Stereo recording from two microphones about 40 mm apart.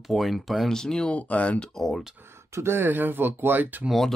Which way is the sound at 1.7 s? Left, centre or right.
Centre.